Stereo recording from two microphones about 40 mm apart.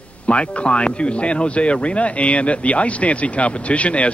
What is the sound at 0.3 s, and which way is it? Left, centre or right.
Speech, left.